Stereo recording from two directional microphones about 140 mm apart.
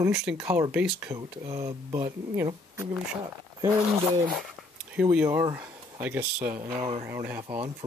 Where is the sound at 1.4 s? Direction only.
30° right (ahead or behind).